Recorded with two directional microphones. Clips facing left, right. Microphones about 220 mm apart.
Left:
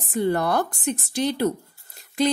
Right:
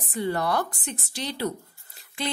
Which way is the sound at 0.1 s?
45° left (ahead or behind).